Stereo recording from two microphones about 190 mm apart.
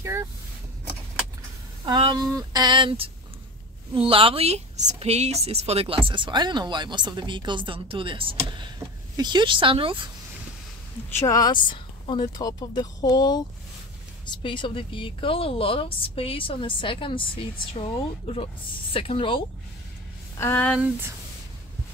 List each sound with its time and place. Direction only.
0.0 s vehicle: 15° right (ahead or behind)
1.9 s a woman's voice: 25° right (ahead or behind)
4.1 s a woman's voice: 30° right (ahead or behind)
11.2 s a woman's voice: 20° left (ahead or behind)
20.3 s speech: 10° left (ahead or behind)